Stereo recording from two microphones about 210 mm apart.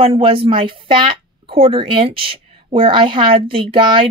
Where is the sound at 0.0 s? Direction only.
25° right (ahead or behind).